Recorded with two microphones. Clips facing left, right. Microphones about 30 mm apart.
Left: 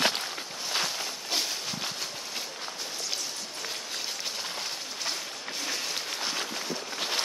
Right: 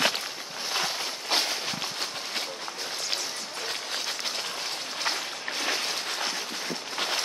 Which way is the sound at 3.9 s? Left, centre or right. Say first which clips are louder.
Right 3 dB; right.